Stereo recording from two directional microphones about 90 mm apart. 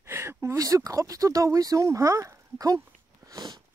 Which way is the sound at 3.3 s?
50° right (ahead or behind).